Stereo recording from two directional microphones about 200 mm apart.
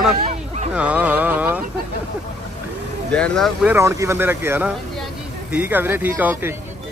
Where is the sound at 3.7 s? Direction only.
15° right (ahead or behind).